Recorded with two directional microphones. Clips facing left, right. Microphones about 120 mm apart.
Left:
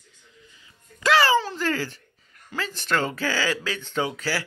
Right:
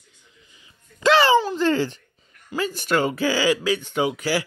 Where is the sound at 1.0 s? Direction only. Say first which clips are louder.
Right 3 dB; 20° right (ahead or behind).